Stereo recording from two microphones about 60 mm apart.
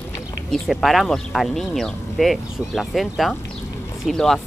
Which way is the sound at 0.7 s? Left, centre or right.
Centre.